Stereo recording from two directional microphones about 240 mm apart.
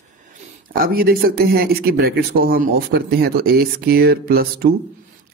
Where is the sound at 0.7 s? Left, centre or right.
Right.